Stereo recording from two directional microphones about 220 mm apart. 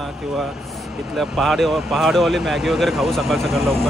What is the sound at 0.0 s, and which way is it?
Speech, centre (ahead or behind).